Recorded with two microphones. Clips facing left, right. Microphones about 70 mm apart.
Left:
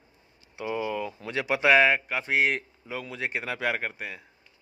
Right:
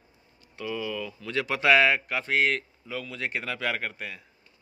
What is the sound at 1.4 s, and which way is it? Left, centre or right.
Speech, centre.